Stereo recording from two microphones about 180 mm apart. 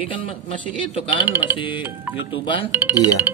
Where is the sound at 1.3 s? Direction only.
10° right (ahead or behind).